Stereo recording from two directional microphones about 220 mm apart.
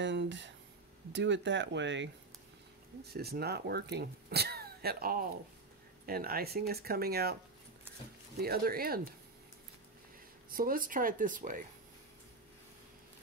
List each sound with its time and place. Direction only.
0.0 s speech: 55° right (ahead or behind)
8.4 s speech: 45° right (ahead or behind)
10.5 s speech: 40° right (ahead or behind)